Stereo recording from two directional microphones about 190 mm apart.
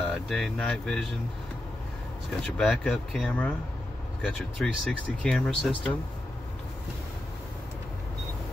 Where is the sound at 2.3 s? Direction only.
5° left (ahead or behind).